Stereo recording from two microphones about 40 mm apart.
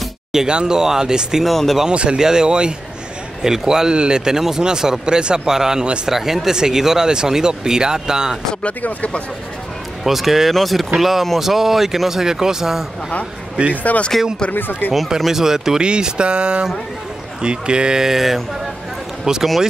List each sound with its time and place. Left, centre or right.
0.3 s speech: centre
1.4 s speech: centre
1.9 s speech: right
8.6 s speech: left
10.0 s speech: centre
13.6 s speech: right
14.5 s speech: left
15.0 s speech: centre
15.8 s speech: right